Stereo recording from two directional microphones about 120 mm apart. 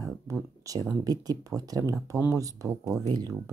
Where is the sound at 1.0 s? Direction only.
30° right (ahead or behind).